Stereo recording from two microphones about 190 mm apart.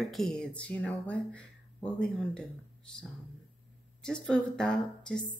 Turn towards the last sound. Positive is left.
turn(degrees=5)  # may be behind; listen again after turning